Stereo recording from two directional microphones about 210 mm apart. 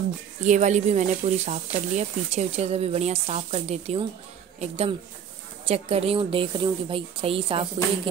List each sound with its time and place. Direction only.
0.4 s a woman's voice: 35° right (ahead or behind)